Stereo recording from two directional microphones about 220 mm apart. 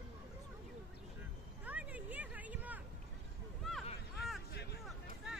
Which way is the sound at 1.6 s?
5° right (ahead or behind).